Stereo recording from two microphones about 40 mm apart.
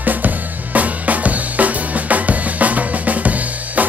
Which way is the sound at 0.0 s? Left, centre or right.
Right.